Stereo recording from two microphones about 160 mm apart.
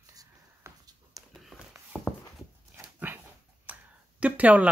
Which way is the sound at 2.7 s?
10° right (ahead or behind).